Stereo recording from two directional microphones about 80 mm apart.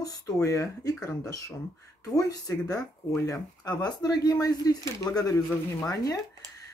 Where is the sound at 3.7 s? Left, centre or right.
Left.